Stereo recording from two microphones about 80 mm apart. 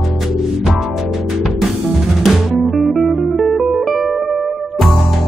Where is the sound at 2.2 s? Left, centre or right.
Centre.